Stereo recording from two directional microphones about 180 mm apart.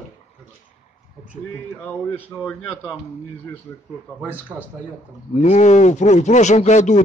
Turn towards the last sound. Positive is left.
turn(degrees=40)  # may be behind; listen again after turning